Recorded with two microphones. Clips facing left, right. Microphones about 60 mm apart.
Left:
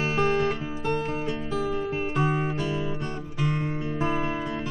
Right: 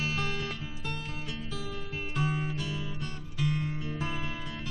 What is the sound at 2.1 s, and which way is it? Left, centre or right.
Music, left.